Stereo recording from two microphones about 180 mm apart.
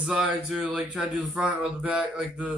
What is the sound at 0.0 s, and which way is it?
Speech, 5° right (ahead or behind).